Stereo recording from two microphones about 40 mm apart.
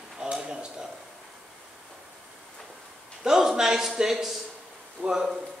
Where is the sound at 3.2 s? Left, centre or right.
Centre.